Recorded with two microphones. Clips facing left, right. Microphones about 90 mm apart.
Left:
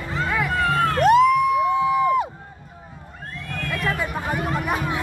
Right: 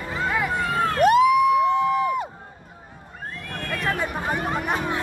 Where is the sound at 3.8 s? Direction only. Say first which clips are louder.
Even; 25° right (ahead or behind).